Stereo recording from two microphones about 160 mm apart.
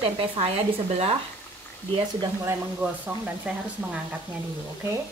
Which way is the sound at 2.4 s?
10° right (ahead or behind).